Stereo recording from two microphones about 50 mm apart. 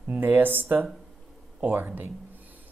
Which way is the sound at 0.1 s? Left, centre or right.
Right.